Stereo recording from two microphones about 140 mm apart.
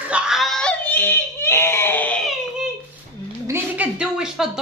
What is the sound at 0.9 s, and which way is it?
A child's voice, 15° left (ahead or behind).